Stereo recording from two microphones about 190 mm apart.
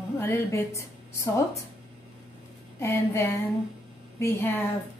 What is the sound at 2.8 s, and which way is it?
A woman's voice, 15° left (ahead or behind).